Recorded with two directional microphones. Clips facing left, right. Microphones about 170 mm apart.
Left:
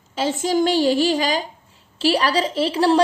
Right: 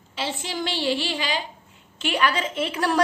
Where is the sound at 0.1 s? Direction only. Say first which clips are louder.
Left 10 dB; 45° left (ahead or behind).